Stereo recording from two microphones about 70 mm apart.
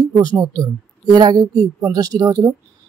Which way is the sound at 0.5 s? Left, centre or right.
Right.